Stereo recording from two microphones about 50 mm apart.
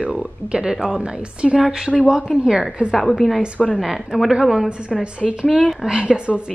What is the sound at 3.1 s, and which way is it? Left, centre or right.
A woman's voice, centre.